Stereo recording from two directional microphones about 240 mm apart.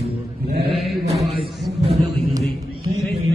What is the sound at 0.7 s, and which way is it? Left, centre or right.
Mantra, centre.